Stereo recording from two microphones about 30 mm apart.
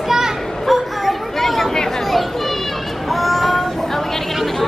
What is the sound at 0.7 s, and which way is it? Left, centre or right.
Chatter, centre.